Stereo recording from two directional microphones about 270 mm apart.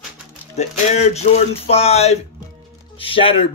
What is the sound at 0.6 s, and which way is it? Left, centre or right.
Speech, left.